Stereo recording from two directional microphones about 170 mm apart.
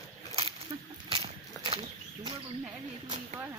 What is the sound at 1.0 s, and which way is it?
Horse, 35° right (ahead or behind).